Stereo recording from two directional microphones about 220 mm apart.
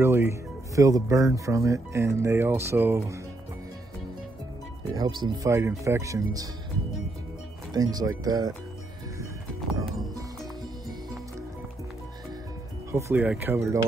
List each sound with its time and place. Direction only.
0.0 s speech: 10° right (ahead or behind)
4.9 s speech: 15° right (ahead or behind)
7.7 s speech: 15° right (ahead or behind)
12.9 s speech: 5° right (ahead or behind)